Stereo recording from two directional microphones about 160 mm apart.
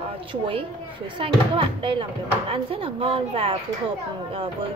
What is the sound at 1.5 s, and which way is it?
Speech, 35° right (ahead or behind).